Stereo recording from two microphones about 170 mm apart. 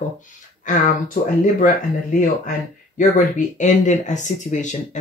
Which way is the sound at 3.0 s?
50° left (ahead or behind).